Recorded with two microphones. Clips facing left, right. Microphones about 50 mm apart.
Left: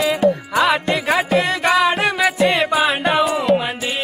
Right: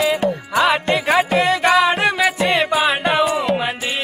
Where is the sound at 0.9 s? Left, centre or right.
Centre.